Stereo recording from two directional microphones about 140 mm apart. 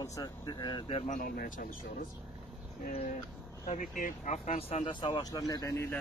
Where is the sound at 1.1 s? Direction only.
90° left.